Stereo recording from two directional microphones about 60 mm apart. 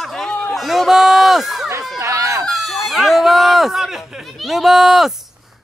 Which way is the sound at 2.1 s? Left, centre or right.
Right.